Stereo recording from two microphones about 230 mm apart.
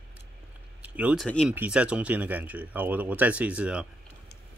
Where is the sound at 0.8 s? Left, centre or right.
Centre.